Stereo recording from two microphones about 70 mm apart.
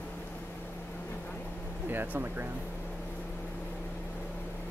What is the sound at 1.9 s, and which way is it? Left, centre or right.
Speech, right.